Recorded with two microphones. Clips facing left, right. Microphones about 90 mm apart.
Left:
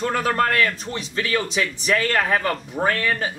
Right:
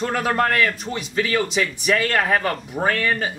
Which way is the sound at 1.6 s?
10° right (ahead or behind).